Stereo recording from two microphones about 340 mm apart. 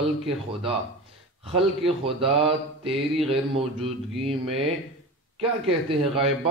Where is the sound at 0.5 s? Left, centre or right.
Centre.